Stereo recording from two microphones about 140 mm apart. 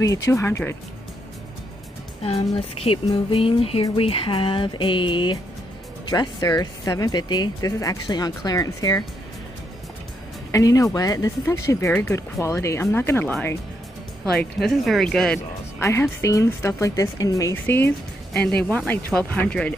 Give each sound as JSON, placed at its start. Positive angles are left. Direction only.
{"t": 0.0, "sound": "speech", "side_deg": 25}
{"t": 2.2, "sound": "speech", "side_deg": 45}
{"t": 3.3, "sound": "music", "side_deg": 40}
{"t": 6.0, "sound": "speech", "side_deg": 30}
{"t": 10.5, "sound": "speech", "side_deg": 25}
{"t": 15.8, "sound": "speech", "side_deg": 20}